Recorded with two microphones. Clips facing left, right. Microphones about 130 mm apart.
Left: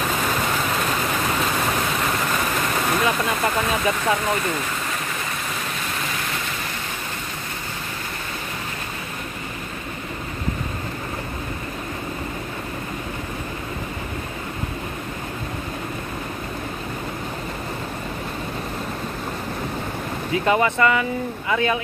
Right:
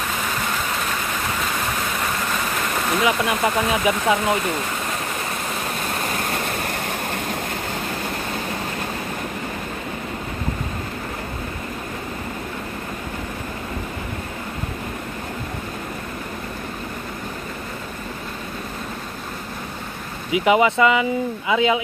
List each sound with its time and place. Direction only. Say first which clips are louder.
2.7 s speech: right 3 dB; 10° right (ahead or behind)
6.0 s waves: right 4 dB; 50° right (ahead or behind)
20.2 s speech: right 3 dB; 15° right (ahead or behind)